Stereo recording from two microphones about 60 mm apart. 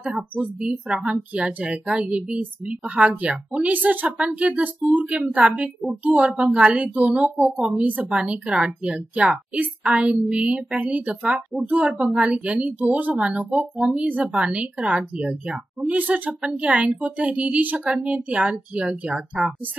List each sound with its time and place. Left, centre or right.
0.6 s a woman's voice: centre
19.3 s a woman's voice: centre